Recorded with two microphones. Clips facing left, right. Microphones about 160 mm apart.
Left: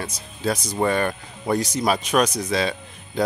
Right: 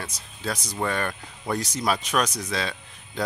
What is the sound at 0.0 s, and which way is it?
A man's voice, 20° left (ahead or behind).